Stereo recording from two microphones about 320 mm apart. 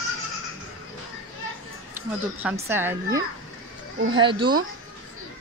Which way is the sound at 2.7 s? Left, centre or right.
Centre.